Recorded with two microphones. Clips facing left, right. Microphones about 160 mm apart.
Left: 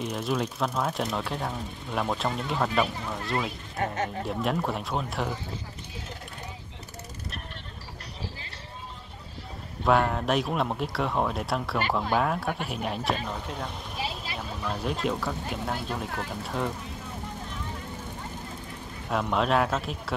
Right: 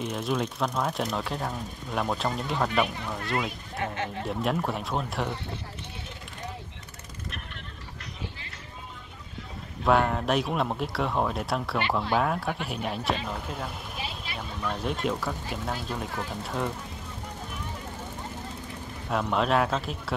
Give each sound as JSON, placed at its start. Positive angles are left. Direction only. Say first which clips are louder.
{"t": 0.0, "sound": "speech", "louder": "even", "side_deg": 0}
{"t": 3.8, "sound": "speech", "louder": "left 3 dB", "side_deg": 40}
{"t": 4.2, "sound": "speech", "louder": "right 2 dB", "side_deg": 0}
{"t": 9.8, "sound": "speech", "louder": "even", "side_deg": 0}
{"t": 19.2, "sound": "speech", "louder": "even", "side_deg": 0}